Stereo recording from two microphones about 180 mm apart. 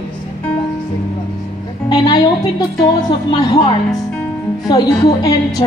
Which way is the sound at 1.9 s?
25° left (ahead or behind).